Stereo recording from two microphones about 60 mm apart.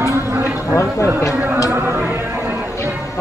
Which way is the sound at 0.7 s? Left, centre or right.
Left.